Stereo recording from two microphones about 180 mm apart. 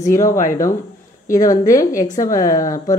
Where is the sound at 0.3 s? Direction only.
50° left (ahead or behind).